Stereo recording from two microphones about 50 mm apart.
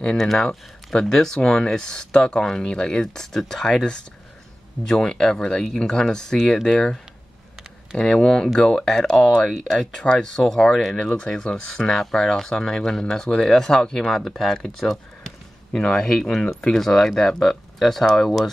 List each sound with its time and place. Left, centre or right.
0.2 s speech: centre
8.0 s speech: centre
11.0 s speech: centre